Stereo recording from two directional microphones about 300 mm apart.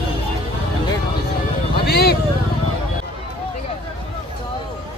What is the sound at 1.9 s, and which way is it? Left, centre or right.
Speech, left.